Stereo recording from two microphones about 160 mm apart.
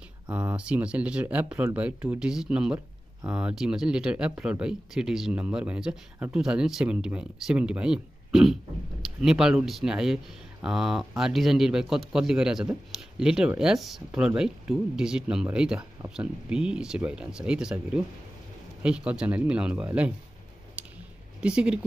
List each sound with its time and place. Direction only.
0.3 s speech: 10° right (ahead or behind)
20.8 s a sound: 10° right (ahead or behind)
21.4 s speech: 5° right (ahead or behind)